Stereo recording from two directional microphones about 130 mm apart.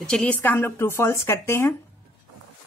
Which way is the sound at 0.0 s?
5° left (ahead or behind).